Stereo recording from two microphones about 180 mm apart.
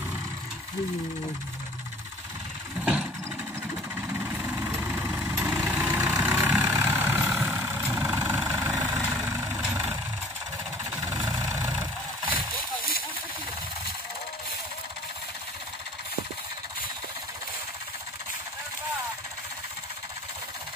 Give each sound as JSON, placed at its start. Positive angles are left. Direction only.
{"t": 2.8, "sound": "vehicle", "side_deg": -5}
{"t": 4.2, "sound": "vehicle", "side_deg": -10}
{"t": 11.1, "sound": "vehicle", "side_deg": -20}